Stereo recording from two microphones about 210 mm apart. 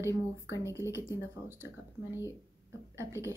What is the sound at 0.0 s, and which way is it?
A woman's voice, 15° right (ahead or behind).